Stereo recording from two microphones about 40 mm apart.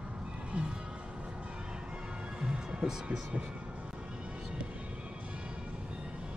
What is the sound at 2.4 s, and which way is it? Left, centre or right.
Music, centre.